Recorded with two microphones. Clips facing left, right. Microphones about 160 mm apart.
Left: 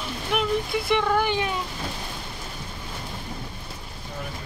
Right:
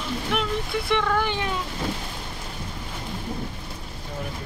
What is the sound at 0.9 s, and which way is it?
Speech, 10° left (ahead or behind).